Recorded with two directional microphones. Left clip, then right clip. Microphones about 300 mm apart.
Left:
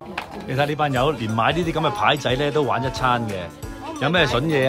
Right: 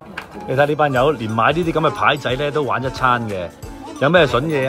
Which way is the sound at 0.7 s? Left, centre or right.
Centre.